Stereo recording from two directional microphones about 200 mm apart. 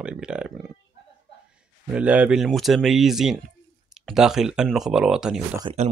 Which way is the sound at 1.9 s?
5° right (ahead or behind).